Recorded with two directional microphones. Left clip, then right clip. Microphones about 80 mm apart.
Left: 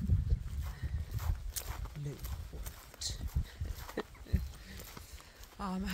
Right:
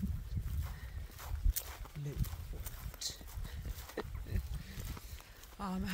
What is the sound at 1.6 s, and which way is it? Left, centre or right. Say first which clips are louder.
Horse: left 3 dB; left.